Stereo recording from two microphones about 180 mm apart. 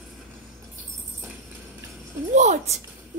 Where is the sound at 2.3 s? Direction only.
40° right (ahead or behind).